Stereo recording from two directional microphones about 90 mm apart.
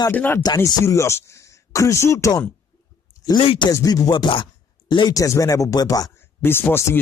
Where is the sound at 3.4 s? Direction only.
90° left.